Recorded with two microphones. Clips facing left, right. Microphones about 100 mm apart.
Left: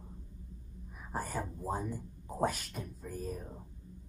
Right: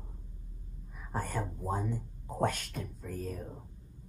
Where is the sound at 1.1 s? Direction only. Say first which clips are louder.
Right 2 dB; 5° left (ahead or behind).